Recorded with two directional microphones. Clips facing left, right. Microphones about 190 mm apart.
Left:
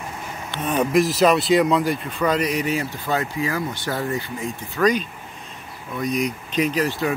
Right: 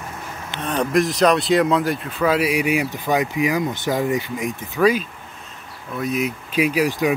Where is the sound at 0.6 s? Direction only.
5° left (ahead or behind); by 4.9 s 15° right (ahead or behind).